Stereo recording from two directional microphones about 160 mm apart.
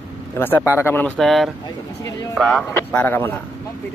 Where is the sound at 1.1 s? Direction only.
Centre (ahead or behind).